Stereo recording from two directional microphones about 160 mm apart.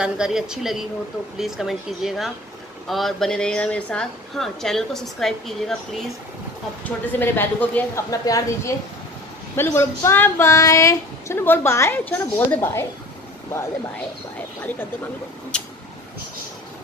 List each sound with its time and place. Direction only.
0.0 s a woman's voice: 5° right (ahead or behind)
6.8 s speech: 10° left (ahead or behind)